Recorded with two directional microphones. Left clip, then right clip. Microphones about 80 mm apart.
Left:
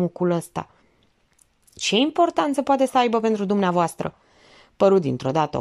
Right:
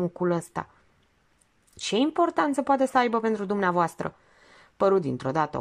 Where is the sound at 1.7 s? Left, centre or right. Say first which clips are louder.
Left 5 dB; centre.